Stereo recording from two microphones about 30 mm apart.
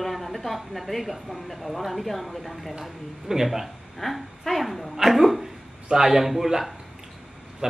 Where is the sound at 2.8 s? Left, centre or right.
Centre.